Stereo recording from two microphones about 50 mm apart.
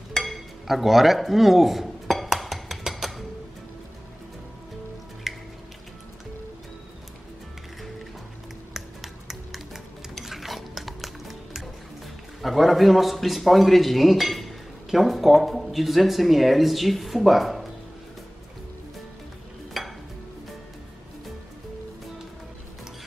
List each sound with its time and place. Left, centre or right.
0.1 s a sound: centre
5.3 s music: centre
8.7 s music: centre
12.4 s a man's voice: centre
19.7 s music: centre